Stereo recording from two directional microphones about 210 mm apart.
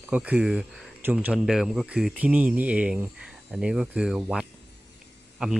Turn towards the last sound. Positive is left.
turn(degrees=-5)  # may be behind; listen again after turning